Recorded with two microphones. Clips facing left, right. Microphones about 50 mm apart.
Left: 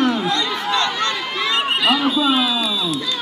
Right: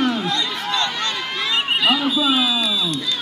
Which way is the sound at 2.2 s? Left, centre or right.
Centre.